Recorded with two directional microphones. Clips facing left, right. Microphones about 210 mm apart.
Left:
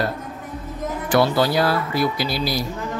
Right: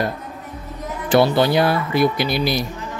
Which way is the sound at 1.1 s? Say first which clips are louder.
Right 3 dB; 25° right (ahead or behind).